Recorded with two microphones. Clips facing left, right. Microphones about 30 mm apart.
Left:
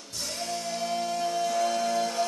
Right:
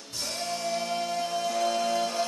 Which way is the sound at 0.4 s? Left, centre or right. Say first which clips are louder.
Right 1 dB; centre.